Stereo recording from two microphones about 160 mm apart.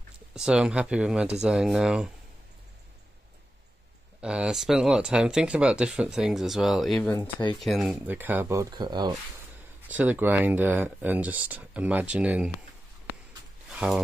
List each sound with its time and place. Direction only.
0.3 s speech: 5° right (ahead or behind)
4.2 s speech: 5° right (ahead or behind)
7.0 s speech: 10° left (ahead or behind)
7.5 s speech: centre (ahead or behind)
8.7 s speech: 25° right (ahead or behind)
9.8 s speech: 10° right (ahead or behind)
13.7 s speech: 5° right (ahead or behind)